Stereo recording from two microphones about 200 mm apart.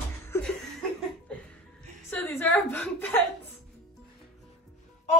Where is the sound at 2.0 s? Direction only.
10° left (ahead or behind).